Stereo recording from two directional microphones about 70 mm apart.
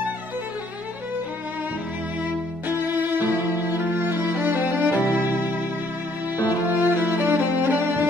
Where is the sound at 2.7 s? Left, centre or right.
Right.